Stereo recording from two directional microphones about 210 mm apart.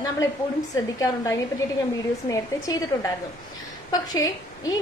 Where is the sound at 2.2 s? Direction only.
15° left (ahead or behind).